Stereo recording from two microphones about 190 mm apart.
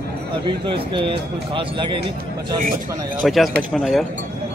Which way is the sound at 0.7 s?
25° right (ahead or behind).